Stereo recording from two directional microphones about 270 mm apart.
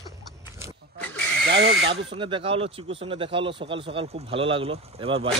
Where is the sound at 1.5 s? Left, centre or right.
Right.